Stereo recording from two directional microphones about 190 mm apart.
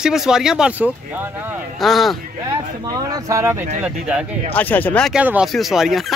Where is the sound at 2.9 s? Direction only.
20° right (ahead or behind).